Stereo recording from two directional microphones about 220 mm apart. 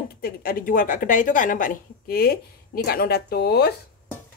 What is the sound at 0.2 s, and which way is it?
Speech, 45° left (ahead or behind).